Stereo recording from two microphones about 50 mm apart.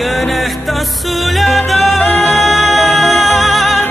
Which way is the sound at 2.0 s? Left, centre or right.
Left.